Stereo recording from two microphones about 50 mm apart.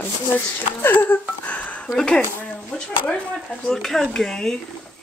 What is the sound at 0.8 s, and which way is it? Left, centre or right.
Speech, left.